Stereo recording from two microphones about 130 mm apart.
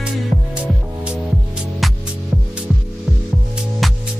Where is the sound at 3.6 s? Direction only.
Centre (ahead or behind).